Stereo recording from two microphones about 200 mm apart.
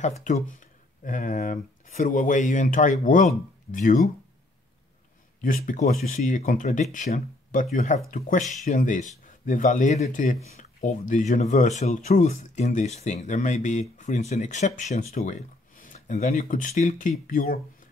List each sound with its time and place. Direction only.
0.2 s speech: 40° left (ahead or behind)
5.4 s speech: 40° left (ahead or behind)